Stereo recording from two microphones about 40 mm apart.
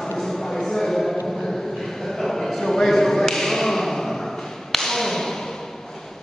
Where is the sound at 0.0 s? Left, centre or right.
Centre.